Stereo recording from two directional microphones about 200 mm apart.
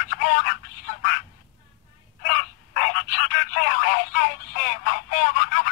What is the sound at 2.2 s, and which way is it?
Telephone, 45° left (ahead or behind).